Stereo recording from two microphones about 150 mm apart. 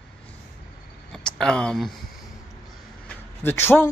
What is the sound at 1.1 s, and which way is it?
Speech, 5° left (ahead or behind).